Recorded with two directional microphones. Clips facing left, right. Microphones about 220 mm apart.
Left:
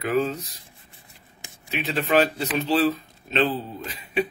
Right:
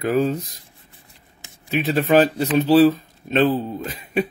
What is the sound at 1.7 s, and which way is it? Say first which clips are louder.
Speech: right 6 dB; 45° right (ahead or behind).